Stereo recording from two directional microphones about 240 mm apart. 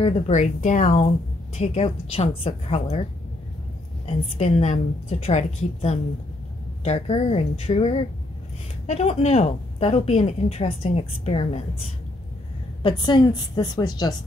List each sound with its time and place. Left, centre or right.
0.0 s a woman's voice: left
4.0 s a woman's voice: left
12.8 s a woman's voice: centre